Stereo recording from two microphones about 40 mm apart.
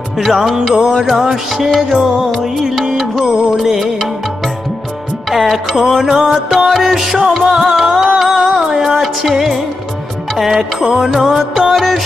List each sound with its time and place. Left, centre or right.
0.2 s music: centre
5.3 s music: centre
10.8 s music: centre
11.1 s music: centre